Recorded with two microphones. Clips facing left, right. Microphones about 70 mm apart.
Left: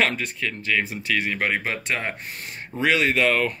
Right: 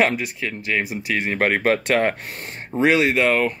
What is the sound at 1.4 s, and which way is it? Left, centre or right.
Speech, right.